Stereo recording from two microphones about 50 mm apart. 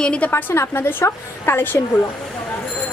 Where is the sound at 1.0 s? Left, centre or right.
Left.